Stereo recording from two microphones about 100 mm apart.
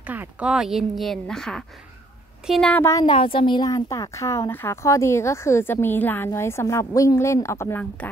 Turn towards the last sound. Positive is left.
turn(degrees=25)  # may be behind; listen again after turning